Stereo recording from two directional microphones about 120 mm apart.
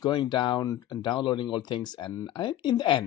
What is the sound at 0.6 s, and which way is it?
Speech, 30° left (ahead or behind).